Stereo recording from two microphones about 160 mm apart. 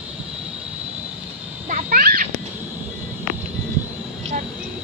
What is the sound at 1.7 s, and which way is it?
Speech, 55° right (ahead or behind).